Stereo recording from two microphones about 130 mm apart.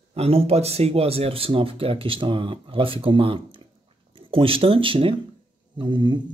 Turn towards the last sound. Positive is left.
turn(degrees=-35)  # may be behind; listen again after turning